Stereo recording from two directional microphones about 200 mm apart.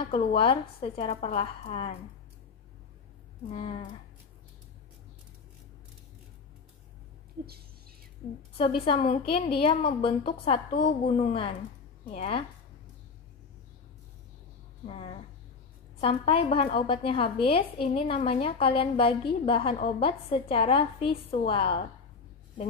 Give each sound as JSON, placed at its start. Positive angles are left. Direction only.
{"t": 0.0, "sound": "a woman's voice", "side_deg": 30}
{"t": 3.4, "sound": "a woman's voice", "side_deg": 30}
{"t": 8.5, "sound": "a woman's voice", "side_deg": 30}
{"t": 14.9, "sound": "a woman's voice", "side_deg": 30}